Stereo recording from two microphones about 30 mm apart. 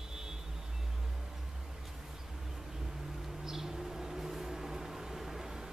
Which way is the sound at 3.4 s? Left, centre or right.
Centre.